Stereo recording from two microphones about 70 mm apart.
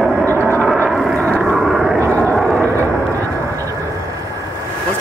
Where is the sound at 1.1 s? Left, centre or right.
Centre.